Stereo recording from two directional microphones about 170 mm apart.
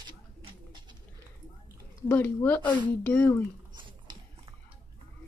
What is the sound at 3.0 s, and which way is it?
Speech, 15° left (ahead or behind).